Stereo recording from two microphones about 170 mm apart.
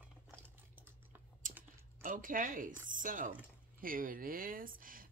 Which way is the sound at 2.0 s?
55° right (ahead or behind).